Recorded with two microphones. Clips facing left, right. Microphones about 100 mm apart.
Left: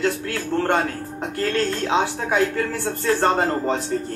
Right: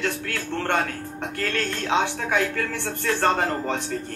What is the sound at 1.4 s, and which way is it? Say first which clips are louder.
A man's voice: left 5 dB; 25° left (ahead or behind).